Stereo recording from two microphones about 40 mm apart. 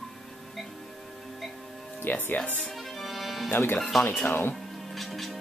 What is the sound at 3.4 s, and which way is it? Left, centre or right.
Speech, left.